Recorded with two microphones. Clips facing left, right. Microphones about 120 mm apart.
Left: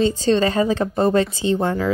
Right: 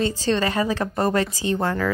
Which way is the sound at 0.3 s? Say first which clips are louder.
Left 4 dB; 30° left (ahead or behind).